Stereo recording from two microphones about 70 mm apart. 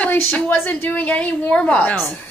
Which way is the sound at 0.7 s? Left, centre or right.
Left.